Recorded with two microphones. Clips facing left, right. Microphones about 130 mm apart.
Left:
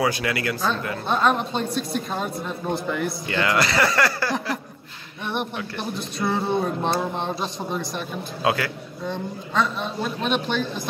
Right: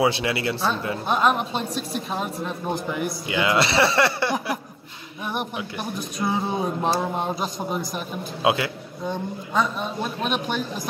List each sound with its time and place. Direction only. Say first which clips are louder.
0.0 s speech: right 2 dB; 25° right (ahead or behind)
1.0 s a man's voice: even; 5° right (ahead or behind)
3.5 s speech: right 2 dB; 25° right (ahead or behind)
5.2 s a sound: left 1 dB; 5° right (ahead or behind)
6.2 s a man's voice: left 2 dB; 5° right (ahead or behind)
8.4 s a man's voice: right 1 dB; 20° right (ahead or behind)